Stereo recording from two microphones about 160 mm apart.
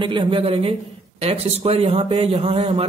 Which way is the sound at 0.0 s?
30° right (ahead or behind).